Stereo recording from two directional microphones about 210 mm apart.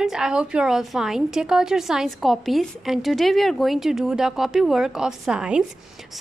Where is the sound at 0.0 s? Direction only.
5° right (ahead or behind).